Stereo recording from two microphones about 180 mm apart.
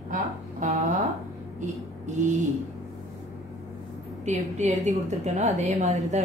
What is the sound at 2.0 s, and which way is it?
Speech, 40° right (ahead or behind).